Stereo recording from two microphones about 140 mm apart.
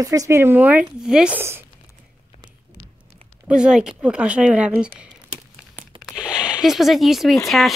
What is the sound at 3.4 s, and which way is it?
Speech, 5° right (ahead or behind).